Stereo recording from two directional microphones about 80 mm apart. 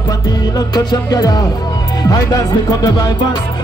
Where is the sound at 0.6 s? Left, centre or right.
Left.